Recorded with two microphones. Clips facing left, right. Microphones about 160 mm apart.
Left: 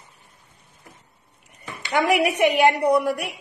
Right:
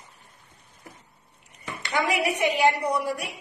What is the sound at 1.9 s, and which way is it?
A woman's voice, 60° left (ahead or behind).